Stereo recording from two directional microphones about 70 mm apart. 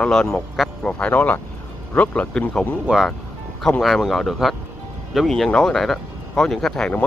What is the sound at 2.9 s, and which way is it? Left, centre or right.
Speech, centre.